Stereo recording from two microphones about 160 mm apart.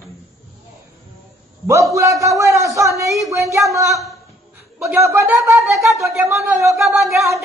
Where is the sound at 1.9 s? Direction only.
20° right (ahead or behind).